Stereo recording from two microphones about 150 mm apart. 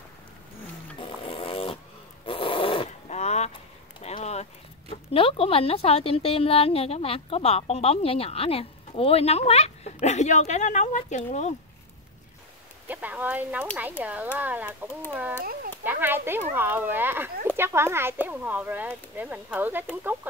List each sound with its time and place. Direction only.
1.0 s snoring: 40° left (ahead or behind)
4.0 s clip-clop: 45° left (ahead or behind)
5.1 s a woman's voice: 40° left (ahead or behind)
12.8 s speech: 10° right (ahead or behind)
15.8 s speech: 15° right (ahead or behind)